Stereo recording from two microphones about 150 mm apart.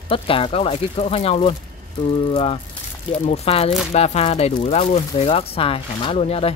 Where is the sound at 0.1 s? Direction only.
35° left (ahead or behind).